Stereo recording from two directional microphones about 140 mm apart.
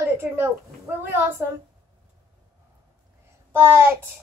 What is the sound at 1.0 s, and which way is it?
Child singing, 15° right (ahead or behind).